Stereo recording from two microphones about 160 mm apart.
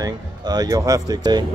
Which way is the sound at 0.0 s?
25° right (ahead or behind).